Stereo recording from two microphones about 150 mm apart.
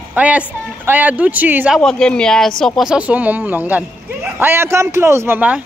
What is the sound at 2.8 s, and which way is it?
A man's voice, 5° right (ahead or behind).